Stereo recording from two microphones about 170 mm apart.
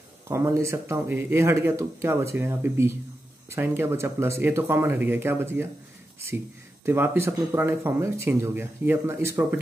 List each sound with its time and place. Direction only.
0.3 s speech: 15° right (ahead or behind)
6.9 s speech: 15° right (ahead or behind)